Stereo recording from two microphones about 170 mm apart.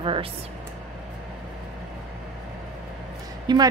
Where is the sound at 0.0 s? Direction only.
30° right (ahead or behind).